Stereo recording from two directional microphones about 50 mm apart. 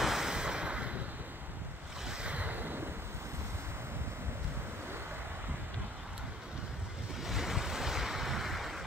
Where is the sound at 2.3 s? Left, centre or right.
Right.